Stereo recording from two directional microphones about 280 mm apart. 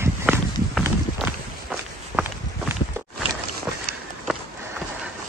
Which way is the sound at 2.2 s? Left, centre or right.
Centre.